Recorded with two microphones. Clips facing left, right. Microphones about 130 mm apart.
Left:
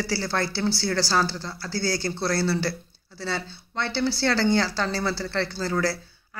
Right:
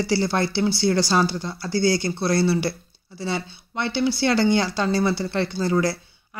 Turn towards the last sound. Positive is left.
turn(degrees=-20)  # may be behind; listen again after turning